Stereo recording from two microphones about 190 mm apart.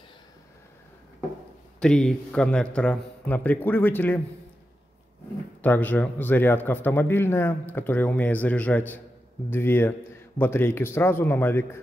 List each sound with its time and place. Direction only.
1.8 s speech: 5° left (ahead or behind)
5.6 s speech: 10° left (ahead or behind)